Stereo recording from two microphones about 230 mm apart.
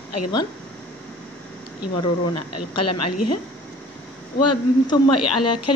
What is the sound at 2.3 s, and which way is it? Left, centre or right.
A woman's voice, left.